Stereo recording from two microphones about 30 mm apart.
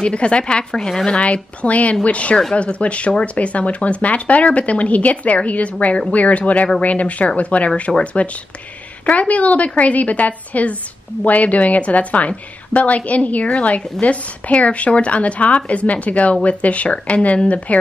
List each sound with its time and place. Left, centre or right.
0.0 s a woman's voice: left
0.7 s speech: centre
1.2 s a woman's voice: left